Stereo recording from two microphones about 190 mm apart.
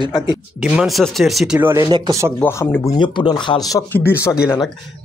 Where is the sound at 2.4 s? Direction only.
10° left (ahead or behind).